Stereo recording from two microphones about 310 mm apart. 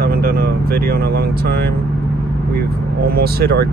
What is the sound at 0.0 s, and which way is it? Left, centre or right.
Speech, right.